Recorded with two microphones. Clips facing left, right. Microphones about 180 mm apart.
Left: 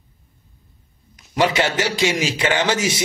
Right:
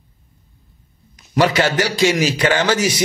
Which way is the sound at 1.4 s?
20° left (ahead or behind).